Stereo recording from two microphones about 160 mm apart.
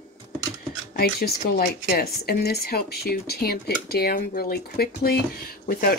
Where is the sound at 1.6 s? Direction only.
70° left (ahead or behind).